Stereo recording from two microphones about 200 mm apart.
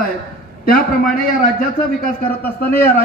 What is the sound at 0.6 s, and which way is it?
A man's voice, 45° left (ahead or behind).